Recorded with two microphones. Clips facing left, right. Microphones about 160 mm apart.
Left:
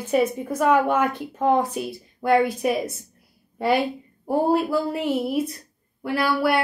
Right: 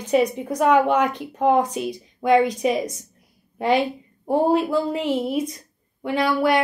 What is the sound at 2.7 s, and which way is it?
A woman's voice, 20° right (ahead or behind).